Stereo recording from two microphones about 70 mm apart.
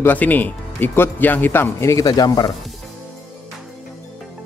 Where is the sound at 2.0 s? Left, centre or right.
Left.